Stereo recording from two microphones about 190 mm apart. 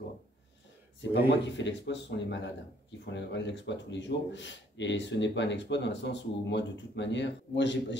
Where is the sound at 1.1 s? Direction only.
65° left (ahead or behind).